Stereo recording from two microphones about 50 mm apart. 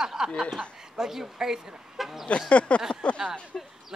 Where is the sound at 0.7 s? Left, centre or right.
Centre.